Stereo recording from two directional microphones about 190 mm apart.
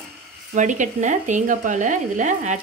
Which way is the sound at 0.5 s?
40° right (ahead or behind).